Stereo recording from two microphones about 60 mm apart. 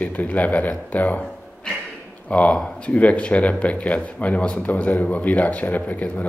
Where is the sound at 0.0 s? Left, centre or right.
Left.